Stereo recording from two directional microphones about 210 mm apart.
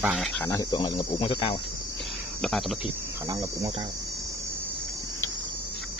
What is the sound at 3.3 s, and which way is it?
Cricket, 15° right (ahead or behind).